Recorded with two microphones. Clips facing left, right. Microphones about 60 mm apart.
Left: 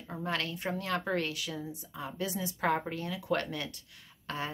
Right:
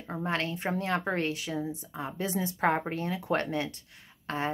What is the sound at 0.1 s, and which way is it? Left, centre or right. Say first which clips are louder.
Speech: right 3 dB; right.